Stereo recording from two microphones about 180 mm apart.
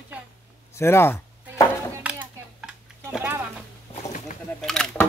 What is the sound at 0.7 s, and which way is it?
Chopping, 15° left (ahead or behind).